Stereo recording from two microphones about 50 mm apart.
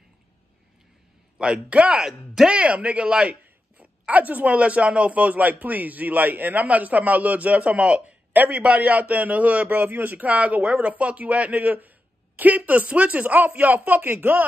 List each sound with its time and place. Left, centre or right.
1.4 s speech: right
2.0 s speech: centre
2.5 s speech: right
3.7 s speech: right